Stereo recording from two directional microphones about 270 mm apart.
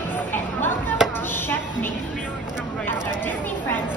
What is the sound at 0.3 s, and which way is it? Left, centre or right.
Chatter, centre.